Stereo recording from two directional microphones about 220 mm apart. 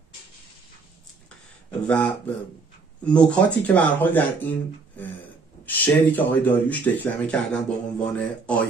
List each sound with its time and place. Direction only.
1.9 s speech: 5° left (ahead or behind)
5.0 s a sound: 10° left (ahead or behind)
5.7 s speech: 10° left (ahead or behind)